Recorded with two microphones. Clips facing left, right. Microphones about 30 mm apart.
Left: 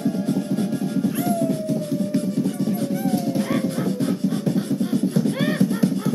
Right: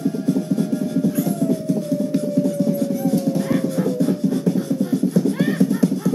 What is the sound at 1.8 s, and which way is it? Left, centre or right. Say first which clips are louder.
Music: right 2 dB; left.